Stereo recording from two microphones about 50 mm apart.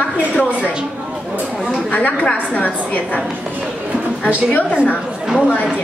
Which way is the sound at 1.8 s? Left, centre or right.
Left.